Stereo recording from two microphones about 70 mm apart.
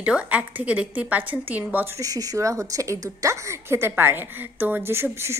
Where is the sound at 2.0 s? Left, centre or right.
Right.